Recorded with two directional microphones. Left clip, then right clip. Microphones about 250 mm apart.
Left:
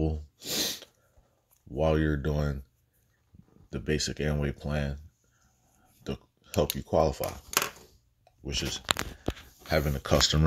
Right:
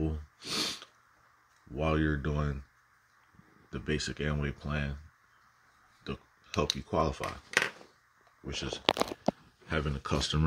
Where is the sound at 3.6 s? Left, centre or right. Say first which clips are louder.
Left 4 dB; centre.